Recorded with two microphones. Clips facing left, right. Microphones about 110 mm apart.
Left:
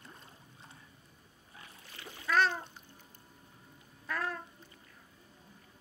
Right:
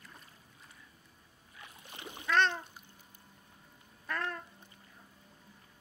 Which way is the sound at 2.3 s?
5° left (ahead or behind).